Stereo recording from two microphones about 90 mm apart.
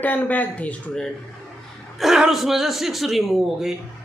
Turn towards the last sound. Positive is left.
turn(degrees=0)  # may be behind; listen again after turning